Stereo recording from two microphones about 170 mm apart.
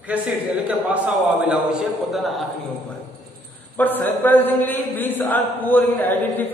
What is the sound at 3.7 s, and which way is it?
A man's voice, 10° left (ahead or behind).